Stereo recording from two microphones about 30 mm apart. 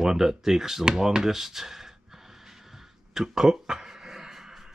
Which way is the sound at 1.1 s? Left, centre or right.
Centre.